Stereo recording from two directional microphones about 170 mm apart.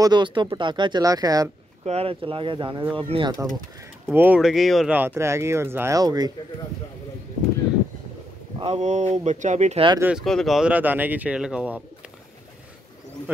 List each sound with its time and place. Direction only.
0.0 s speech: 25° right (ahead or behind)
1.9 s speech: 35° right (ahead or behind)
4.0 s speech: 10° right (ahead or behind)
8.5 s speech: 40° right (ahead or behind)
9.9 s speech: 10° right (ahead or behind)
10.2 s speech: centre (ahead or behind)